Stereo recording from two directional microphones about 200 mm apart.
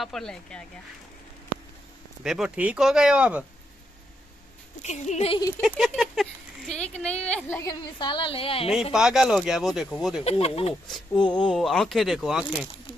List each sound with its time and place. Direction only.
0.0 s speech: centre (ahead or behind)
2.2 s speech: 5° right (ahead or behind)
4.8 s speech: 35° left (ahead or behind)
5.6 s speech: centre (ahead or behind); by 8.6 s 30° left (ahead or behind)
8.9 s speech: centre (ahead or behind)
10.2 s speech: 30° left (ahead or behind)
11.4 s speech: centre (ahead or behind)